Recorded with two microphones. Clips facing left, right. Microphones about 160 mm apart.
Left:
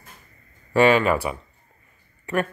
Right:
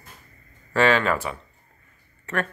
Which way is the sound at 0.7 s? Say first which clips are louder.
Left 3 dB; 15° left (ahead or behind).